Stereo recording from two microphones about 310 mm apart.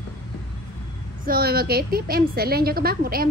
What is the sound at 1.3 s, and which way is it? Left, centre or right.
A woman's voice, right.